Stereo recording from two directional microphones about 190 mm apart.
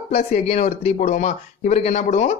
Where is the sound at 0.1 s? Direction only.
35° left (ahead or behind).